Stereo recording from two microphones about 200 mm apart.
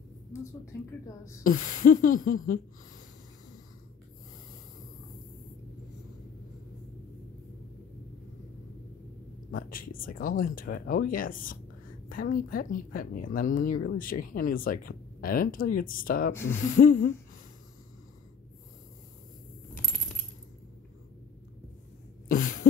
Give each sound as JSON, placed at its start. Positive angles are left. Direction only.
{"t": 1.4, "sound": "speech", "side_deg": 45}
{"t": 9.5, "sound": "speech", "side_deg": 45}
{"t": 19.7, "sound": "keys jangling", "side_deg": 0}
{"t": 22.3, "sound": "cough", "side_deg": 40}